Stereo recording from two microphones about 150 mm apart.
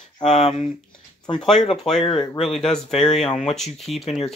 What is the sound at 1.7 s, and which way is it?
Speech, centre (ahead or behind).